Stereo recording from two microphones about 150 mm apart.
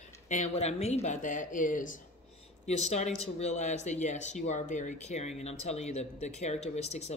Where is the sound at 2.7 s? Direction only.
50° left (ahead or behind).